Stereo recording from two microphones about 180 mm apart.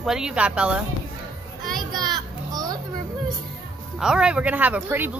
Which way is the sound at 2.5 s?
20° right (ahead or behind).